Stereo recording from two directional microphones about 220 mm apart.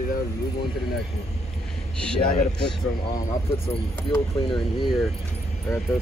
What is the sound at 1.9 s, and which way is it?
Speech, 5° left (ahead or behind).